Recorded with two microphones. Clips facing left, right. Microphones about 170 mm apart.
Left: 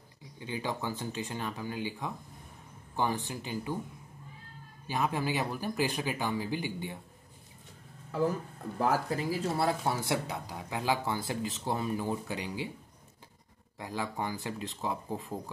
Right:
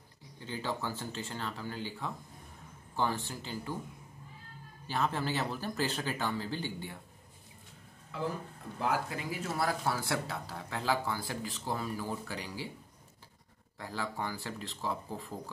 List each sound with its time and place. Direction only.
0.4 s speech: 15° left (ahead or behind)
4.8 s speech: 15° left (ahead or behind)
8.7 s speech: 35° left (ahead or behind); by 12.6 s 20° left (ahead or behind)
13.7 s speech: 15° left (ahead or behind)